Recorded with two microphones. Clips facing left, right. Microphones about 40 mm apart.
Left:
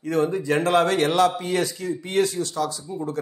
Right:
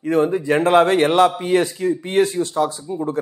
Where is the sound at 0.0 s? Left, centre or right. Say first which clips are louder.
Right 5 dB; right.